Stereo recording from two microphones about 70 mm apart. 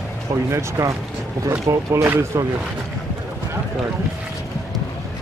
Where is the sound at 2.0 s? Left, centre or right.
Right.